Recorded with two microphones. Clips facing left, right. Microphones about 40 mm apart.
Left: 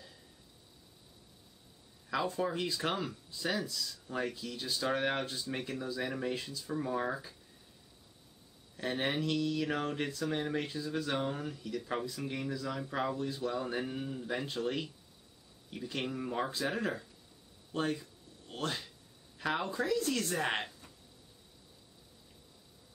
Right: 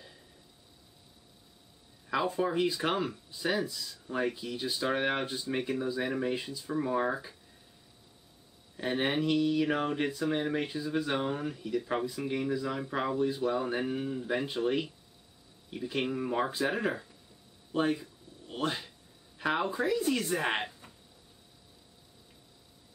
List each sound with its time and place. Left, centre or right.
2.0 s speech: centre
8.7 s speech: centre